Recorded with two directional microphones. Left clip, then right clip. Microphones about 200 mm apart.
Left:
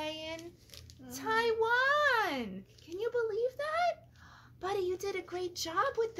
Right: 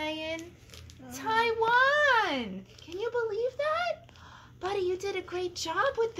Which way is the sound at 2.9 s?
30° left (ahead or behind).